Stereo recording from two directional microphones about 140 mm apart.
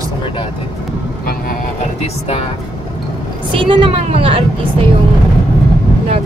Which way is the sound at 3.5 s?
35° right (ahead or behind).